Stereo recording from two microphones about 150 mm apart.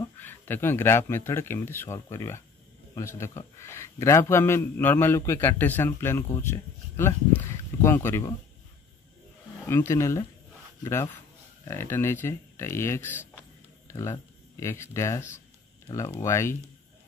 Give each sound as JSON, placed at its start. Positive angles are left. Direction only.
{"t": 0.2, "sound": "a man's voice", "side_deg": 15}
{"t": 9.7, "sound": "a man's voice", "side_deg": 15}